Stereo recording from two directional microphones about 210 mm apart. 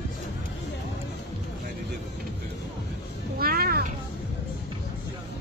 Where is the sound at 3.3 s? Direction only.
45° right (ahead or behind).